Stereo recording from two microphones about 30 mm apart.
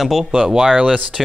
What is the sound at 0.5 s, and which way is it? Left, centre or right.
Speech, right.